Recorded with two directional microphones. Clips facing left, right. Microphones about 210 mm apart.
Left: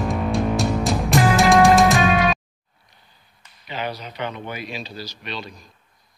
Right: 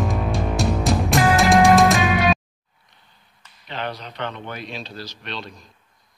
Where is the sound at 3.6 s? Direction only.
5° left (ahead or behind).